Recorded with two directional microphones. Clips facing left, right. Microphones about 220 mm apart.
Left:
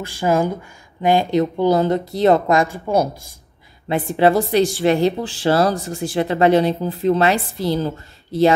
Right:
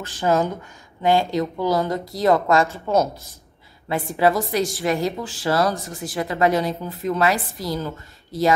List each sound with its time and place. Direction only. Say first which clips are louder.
0.0 s a woman's voice: left 2 dB; 10° left (ahead or behind)
3.9 s a woman's voice: left 4 dB; 25° left (ahead or behind)